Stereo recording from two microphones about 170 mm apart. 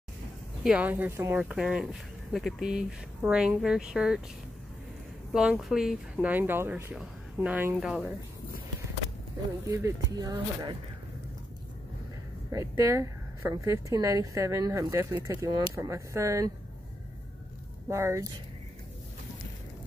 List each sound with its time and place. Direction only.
0.7 s speech: 10° right (ahead or behind)
5.3 s speech: 5° right (ahead or behind)
9.7 s speech: 15° right (ahead or behind)
12.4 s speech: 20° right (ahead or behind)
17.8 s speech: 15° right (ahead or behind)